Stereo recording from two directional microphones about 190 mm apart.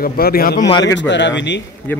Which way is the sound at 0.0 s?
50° left (ahead or behind).